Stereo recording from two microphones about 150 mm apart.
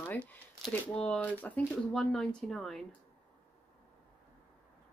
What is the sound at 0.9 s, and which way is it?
Speech, 10° left (ahead or behind).